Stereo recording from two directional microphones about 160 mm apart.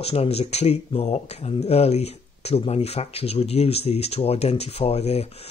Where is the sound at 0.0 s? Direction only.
40° left (ahead or behind).